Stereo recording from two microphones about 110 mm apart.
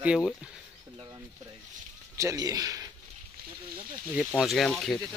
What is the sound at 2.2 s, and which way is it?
Speech, 30° right (ahead or behind).